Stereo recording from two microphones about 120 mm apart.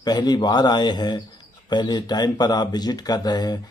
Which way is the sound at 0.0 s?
35° left (ahead or behind).